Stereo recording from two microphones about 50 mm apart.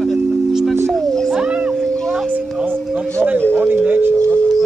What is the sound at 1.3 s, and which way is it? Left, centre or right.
Music, centre.